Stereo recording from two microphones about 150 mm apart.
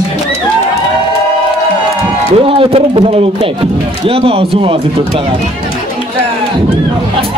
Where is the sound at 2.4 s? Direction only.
40° right (ahead or behind).